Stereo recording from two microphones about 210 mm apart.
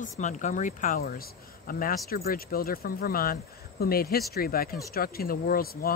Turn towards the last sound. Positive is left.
turn(degrees=45)  # may be behind; listen again after turning